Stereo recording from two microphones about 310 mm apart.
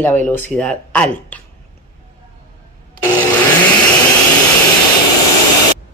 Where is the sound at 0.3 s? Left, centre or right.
Centre.